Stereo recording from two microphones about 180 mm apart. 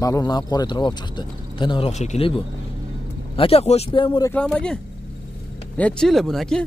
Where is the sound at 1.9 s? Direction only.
40° left (ahead or behind).